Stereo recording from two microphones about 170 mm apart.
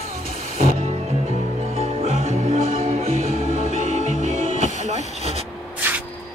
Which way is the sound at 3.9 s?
45° right (ahead or behind).